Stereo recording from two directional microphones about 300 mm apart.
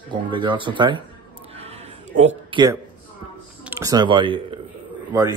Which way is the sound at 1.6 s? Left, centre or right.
Right.